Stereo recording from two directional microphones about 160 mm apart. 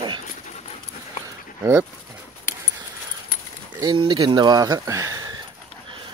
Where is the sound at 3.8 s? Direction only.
30° right (ahead or behind).